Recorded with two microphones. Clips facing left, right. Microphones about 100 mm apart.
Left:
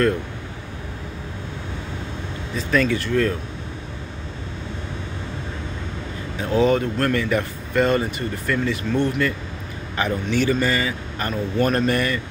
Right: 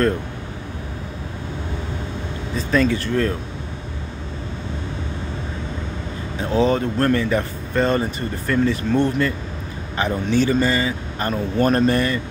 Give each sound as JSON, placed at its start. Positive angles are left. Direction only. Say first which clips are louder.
{"t": 2.5, "sound": "speech", "louder": "right 1 dB", "side_deg": -25}
{"t": 6.4, "sound": "speech", "louder": "even", "side_deg": -30}